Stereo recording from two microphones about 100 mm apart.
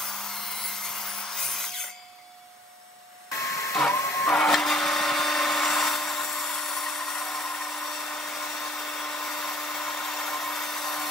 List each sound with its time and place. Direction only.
0.6 s tools: 5° left (ahead or behind)
3.3 s a sound: 30° left (ahead or behind)
3.9 s printer: 25° left (ahead or behind)
4.3 s wood: 5° left (ahead or behind)